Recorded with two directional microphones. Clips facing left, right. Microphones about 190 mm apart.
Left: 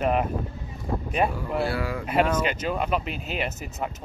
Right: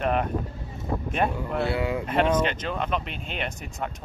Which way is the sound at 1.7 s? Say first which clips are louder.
Right 2 dB; 25° right (ahead or behind).